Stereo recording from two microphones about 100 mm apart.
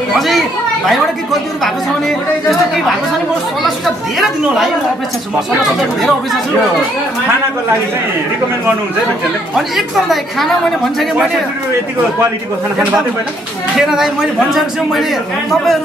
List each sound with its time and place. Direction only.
0.1 s chatter: centre (ahead or behind)
0.8 s speech: centre (ahead or behind)
9.6 s speech: centre (ahead or behind)
13.7 s speech: 5° right (ahead or behind)